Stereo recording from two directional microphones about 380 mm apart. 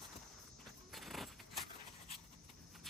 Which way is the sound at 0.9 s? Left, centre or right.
Centre.